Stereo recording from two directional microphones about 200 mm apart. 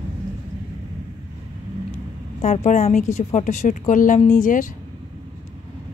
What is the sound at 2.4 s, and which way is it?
A woman's voice, 35° left (ahead or behind).